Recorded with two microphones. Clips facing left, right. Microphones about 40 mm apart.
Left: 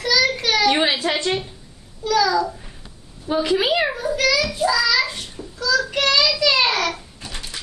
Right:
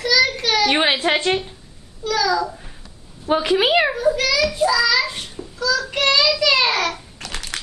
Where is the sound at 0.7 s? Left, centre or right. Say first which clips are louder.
Right 2 dB; right.